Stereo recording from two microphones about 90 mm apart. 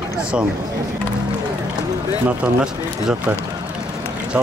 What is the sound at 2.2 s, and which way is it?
Speech, 10° right (ahead or behind).